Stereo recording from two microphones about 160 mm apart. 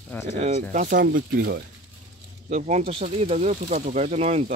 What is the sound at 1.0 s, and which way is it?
Speech, 70° right (ahead or behind).